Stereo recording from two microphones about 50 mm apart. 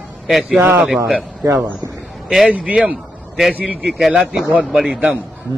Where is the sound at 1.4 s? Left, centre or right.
Right.